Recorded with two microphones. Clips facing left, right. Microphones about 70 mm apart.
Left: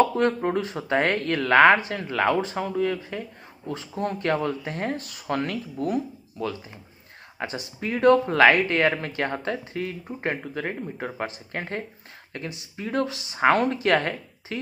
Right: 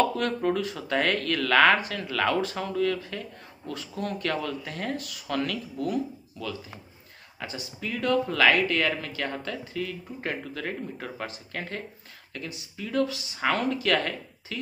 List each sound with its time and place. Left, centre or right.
0.0 s speech: left